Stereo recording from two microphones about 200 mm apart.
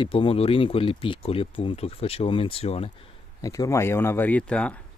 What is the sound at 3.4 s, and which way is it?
Speech, 15° left (ahead or behind).